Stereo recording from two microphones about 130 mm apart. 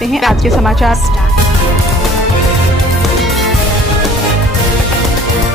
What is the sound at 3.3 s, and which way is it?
Music, centre (ahead or behind).